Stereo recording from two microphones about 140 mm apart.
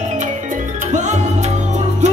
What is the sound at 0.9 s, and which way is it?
Music, 60° right (ahead or behind).